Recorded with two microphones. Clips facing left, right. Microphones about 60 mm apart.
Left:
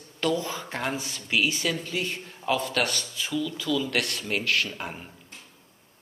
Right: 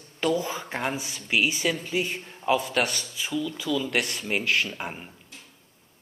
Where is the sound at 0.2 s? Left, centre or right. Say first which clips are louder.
Right 1 dB; centre.